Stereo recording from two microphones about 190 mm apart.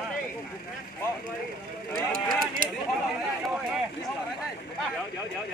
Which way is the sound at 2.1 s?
50° right (ahead or behind).